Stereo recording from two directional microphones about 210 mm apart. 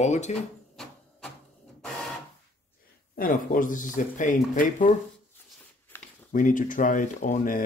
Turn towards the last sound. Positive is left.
turn(degrees=40)  # may be behind; listen again after turning